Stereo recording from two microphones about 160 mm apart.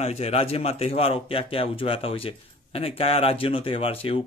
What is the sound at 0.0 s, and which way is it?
Speech, 40° left (ahead or behind).